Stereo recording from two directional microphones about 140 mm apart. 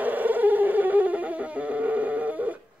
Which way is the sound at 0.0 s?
10° right (ahead or behind).